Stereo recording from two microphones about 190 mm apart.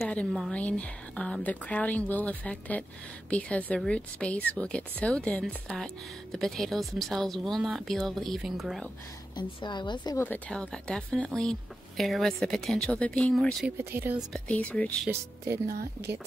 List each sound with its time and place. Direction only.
0.0 s a woman's voice: 5° left (ahead or behind)
9.3 s a woman's voice: 25° left (ahead or behind)
10.2 s speech: 10° left (ahead or behind)
13.7 s speech: 10° right (ahead or behind)
14.3 s a woman's voice: 5° left (ahead or behind)
15.0 s speech: 15° right (ahead or behind)
15.7 s speech: 60° right (ahead or behind)